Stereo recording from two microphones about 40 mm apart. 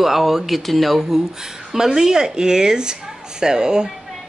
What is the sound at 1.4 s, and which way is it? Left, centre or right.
Speech, centre.